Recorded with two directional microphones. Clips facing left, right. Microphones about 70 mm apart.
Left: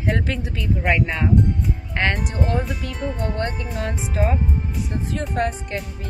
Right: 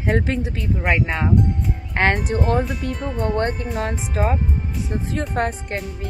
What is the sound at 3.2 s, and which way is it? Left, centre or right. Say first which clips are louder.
Speech: right 4 dB; right.